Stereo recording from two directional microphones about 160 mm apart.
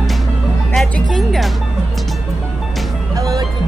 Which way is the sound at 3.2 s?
20° right (ahead or behind).